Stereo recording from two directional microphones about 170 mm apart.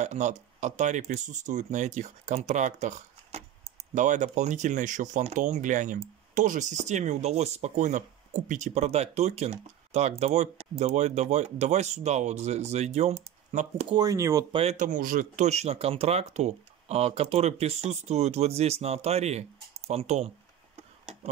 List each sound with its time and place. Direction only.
0.0 s speech: 45° right (ahead or behind)
13.8 s speech: 20° right (ahead or behind)
14.5 s speech: 40° right (ahead or behind)